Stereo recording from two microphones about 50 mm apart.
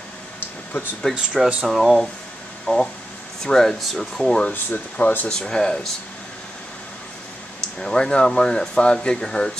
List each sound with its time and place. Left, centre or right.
0.7 s speech: left
1.4 s speech: centre
2.6 s speech: centre
4.5 s speech: left
5.3 s speech: centre
7.8 s speech: centre